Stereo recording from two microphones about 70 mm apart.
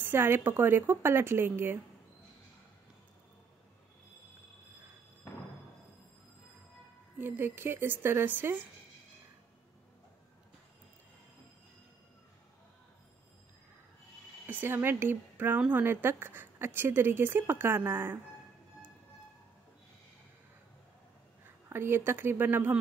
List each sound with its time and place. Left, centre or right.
0.0 s speech: right
7.2 s speech: right
14.4 s a woman's voice: right
21.6 s speech: right